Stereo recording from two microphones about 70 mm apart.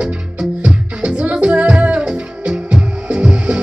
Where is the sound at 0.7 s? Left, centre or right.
Centre.